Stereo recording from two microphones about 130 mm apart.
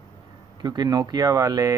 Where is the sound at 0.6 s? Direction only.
30° right (ahead or behind).